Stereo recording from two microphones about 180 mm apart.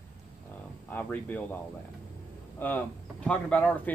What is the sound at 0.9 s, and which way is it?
Speech, 10° left (ahead or behind).